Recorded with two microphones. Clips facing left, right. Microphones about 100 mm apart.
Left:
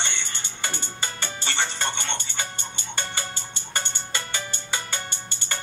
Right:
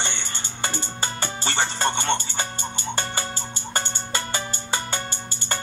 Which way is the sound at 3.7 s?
35° right (ahead or behind).